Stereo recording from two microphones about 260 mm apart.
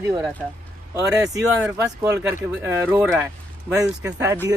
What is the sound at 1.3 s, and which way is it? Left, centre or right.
Speech, centre.